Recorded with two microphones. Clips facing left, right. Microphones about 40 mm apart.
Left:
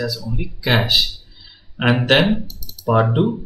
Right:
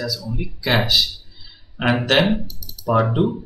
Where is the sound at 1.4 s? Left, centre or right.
Centre.